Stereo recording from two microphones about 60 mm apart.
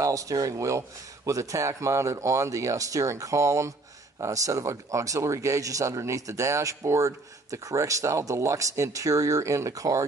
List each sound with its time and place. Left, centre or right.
0.0 s speech: right
4.2 s speech: right